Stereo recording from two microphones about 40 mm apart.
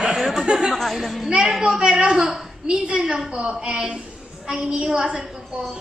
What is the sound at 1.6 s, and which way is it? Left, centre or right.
A woman's voice, centre.